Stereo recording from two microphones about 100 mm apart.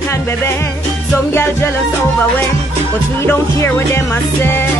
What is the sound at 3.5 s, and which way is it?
Speech, 25° left (ahead or behind).